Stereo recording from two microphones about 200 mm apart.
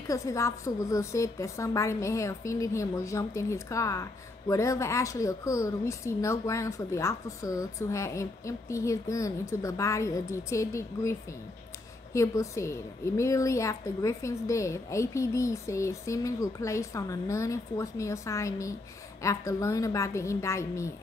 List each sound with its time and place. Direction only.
0.1 s a woman's voice: 15° left (ahead or behind)